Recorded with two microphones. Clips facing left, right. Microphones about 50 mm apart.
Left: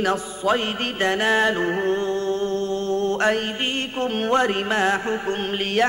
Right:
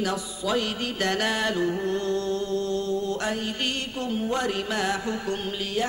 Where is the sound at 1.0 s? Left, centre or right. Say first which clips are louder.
Left 6 dB; left.